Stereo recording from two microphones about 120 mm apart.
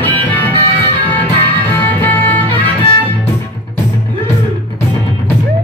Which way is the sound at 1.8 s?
15° left (ahead or behind).